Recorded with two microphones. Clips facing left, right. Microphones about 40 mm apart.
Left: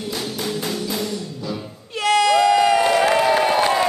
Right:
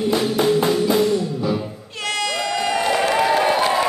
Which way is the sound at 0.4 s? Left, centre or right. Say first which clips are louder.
Right 9 dB; right.